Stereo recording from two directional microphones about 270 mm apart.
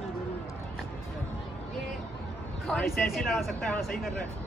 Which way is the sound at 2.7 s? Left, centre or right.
Centre.